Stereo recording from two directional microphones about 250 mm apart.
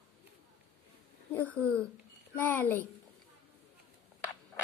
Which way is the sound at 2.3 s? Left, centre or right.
Centre.